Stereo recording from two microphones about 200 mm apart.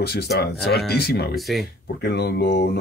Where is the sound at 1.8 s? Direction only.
55° left (ahead or behind).